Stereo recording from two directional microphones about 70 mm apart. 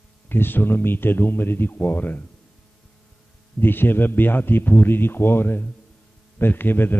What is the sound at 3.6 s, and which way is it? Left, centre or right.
Speech, left.